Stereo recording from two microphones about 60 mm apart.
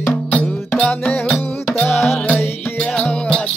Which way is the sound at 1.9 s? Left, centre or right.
Left.